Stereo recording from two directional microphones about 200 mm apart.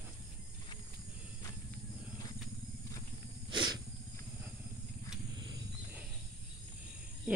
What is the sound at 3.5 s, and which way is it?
Wild animals, 20° right (ahead or behind).